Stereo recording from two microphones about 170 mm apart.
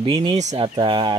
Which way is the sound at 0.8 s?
30° right (ahead or behind).